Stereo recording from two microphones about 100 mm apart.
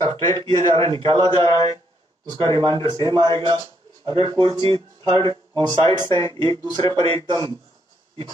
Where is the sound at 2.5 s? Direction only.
45° right (ahead or behind).